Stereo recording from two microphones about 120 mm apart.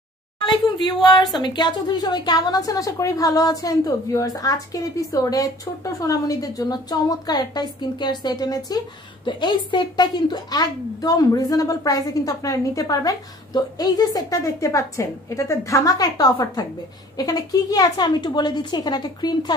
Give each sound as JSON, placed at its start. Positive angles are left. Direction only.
{"t": 0.5, "sound": "a woman's voice", "side_deg": 35}